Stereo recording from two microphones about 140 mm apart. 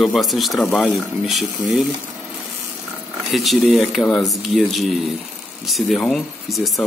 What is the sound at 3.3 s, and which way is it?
Speech, centre (ahead or behind).